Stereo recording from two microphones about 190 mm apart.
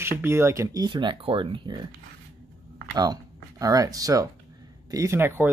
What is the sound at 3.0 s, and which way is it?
Speech, 20° right (ahead or behind).